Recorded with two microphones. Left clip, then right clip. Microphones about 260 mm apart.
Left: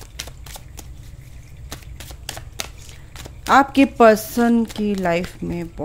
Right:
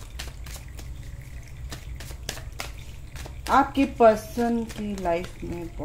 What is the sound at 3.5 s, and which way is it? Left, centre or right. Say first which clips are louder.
Speech: left 7 dB; left.